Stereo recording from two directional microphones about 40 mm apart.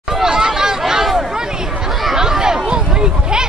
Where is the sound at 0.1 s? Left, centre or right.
Centre.